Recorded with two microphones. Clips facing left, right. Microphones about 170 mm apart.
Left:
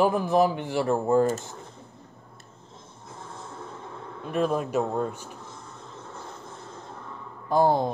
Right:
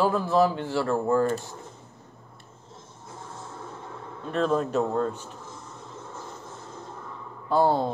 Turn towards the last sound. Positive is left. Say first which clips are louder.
# left 1 dB
turn(degrees=15)  # may be behind; listen again after turning